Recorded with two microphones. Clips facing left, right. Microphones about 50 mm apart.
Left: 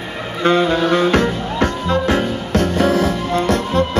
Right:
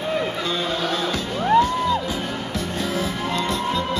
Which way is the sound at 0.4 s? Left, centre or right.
Left.